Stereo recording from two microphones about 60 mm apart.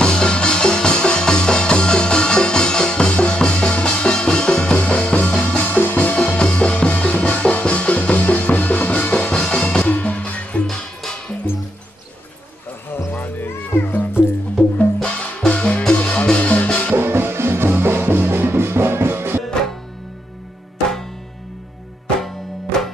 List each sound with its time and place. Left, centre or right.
0.0 s music: centre
13.1 s music: left
15.0 s music: centre
16.9 s music: right
22.2 s music: centre